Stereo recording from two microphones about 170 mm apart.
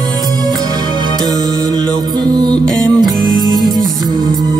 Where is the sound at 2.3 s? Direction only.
25° right (ahead or behind).